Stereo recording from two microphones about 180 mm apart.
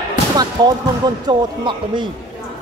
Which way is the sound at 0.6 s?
25° right (ahead or behind).